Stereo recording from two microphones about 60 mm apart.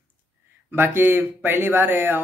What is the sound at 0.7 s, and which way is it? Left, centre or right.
Speech, right.